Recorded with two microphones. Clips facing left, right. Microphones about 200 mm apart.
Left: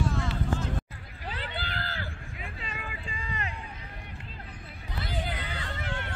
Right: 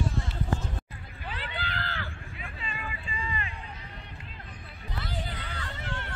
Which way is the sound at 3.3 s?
80° left.